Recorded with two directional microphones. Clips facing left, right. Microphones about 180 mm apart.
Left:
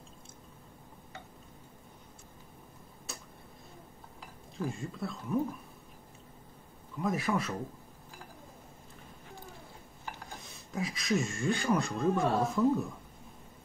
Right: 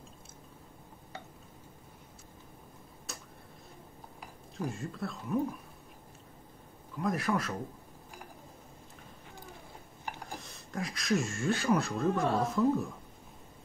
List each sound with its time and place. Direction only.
4.6 s speech: centre (ahead or behind)
7.0 s speech: centre (ahead or behind)
10.4 s speech: centre (ahead or behind)